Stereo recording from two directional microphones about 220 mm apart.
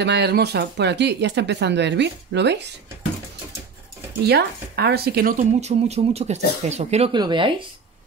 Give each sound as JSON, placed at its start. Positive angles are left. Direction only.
{"t": 0.0, "sound": "speech", "side_deg": -50}
{"t": 4.3, "sound": "speech", "side_deg": -45}